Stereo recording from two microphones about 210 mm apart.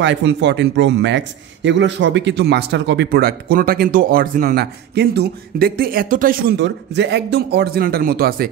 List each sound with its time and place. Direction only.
0.0 s a man's voice: 60° right (ahead or behind)